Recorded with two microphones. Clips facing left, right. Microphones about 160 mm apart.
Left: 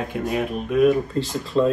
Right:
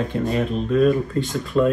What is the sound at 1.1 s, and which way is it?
Speech, 30° left (ahead or behind).